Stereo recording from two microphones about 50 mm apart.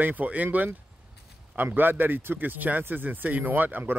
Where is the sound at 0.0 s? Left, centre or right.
Right.